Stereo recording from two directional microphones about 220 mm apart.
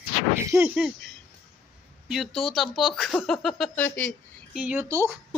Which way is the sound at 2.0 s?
Centre (ahead or behind).